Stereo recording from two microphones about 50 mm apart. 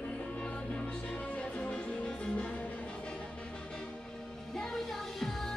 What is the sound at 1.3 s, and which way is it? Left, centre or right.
Music, left.